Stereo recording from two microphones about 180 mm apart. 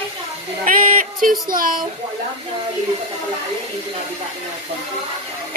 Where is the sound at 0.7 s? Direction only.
50° right (ahead or behind).